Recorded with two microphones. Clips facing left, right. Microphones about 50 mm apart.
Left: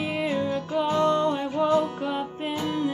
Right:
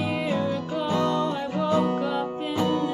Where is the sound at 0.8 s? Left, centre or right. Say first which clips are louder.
Left 2 dB; left.